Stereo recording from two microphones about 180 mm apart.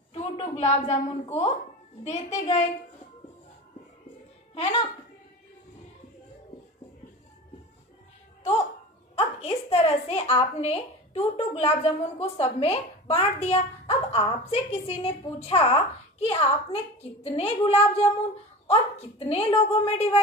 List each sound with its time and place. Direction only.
0.1 s a woman's voice: 35° left (ahead or behind)
9.1 s a woman's voice: 35° left (ahead or behind)